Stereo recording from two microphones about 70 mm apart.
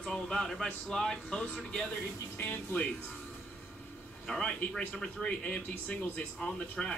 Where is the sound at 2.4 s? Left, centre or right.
Left.